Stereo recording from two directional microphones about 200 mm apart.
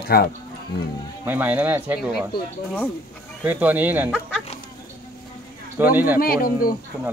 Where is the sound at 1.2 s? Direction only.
10° right (ahead or behind).